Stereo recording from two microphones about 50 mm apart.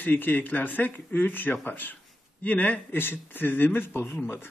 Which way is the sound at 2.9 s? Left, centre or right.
Left.